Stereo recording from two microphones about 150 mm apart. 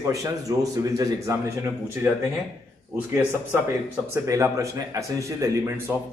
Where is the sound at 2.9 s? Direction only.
10° right (ahead or behind).